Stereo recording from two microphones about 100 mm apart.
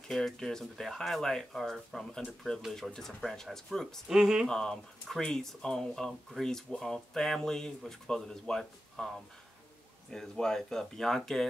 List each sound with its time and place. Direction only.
0.1 s speech: 5° left (ahead or behind)
4.5 s speech: 5° left (ahead or behind)
10.1 s speech: 5° left (ahead or behind)